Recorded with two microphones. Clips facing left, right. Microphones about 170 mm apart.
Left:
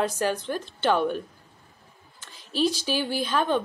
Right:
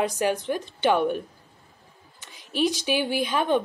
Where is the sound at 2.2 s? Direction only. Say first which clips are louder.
Even; 15° right (ahead or behind).